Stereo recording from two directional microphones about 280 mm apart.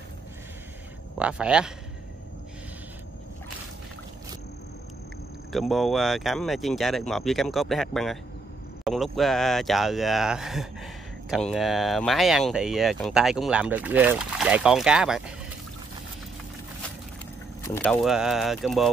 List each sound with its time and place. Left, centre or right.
1.2 s speech: centre
5.5 s speech: centre
17.6 s speech: centre